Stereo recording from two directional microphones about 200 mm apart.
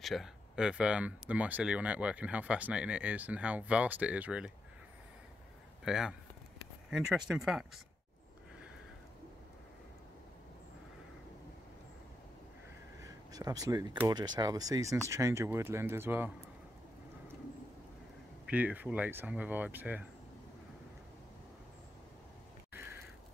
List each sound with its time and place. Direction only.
0.0 s speech: centre (ahead or behind)
5.9 s speech: 5° right (ahead or behind)
13.0 s a sound: 20° right (ahead or behind)
14.0 s speech: 20° right (ahead or behind)
18.4 s speech: 5° right (ahead or behind)
22.7 s a sound: 10° right (ahead or behind)